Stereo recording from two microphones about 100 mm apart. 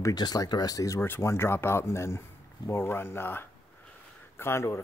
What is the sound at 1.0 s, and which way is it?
Speech, 25° left (ahead or behind).